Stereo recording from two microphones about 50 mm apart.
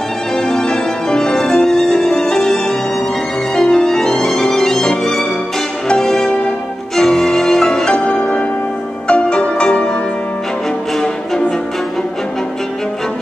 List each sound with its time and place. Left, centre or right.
0.4 s violin: centre
3.5 s music: centre
4.2 s violin: centre
5.9 s music: centre